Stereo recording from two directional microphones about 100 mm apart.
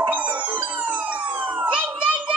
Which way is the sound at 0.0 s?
15° right (ahead or behind).